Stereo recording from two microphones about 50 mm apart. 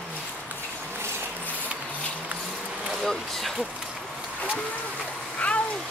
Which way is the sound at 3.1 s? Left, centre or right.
Centre.